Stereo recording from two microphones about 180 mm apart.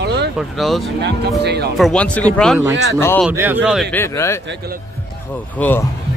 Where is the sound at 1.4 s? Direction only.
65° right (ahead or behind).